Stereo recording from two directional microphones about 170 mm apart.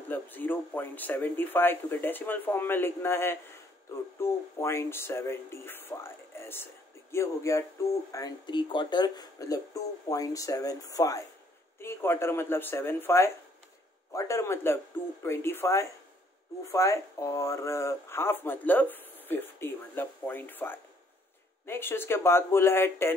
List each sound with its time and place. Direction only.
0.1 s speech: 10° left (ahead or behind)